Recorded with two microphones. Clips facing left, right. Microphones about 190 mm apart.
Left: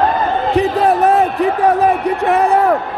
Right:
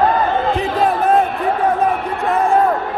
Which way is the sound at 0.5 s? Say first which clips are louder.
Left 4 dB; 75° left (ahead or behind).